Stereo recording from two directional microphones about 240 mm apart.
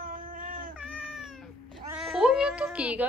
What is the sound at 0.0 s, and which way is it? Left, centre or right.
Baby cry, right.